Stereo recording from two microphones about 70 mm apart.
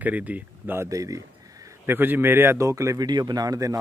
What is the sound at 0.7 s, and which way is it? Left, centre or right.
Speech, right.